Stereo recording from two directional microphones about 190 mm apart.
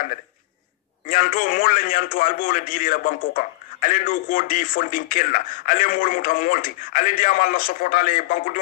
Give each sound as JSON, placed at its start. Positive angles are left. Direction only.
{"t": 1.0, "sound": "a man's voice", "side_deg": 45}